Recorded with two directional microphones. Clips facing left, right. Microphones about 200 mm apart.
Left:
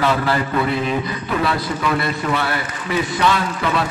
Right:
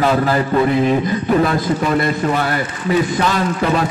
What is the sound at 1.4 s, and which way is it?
A man's voice, 45° right (ahead or behind).